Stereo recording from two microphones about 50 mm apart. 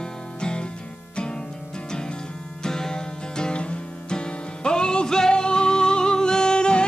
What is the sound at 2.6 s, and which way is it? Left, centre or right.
Music, centre.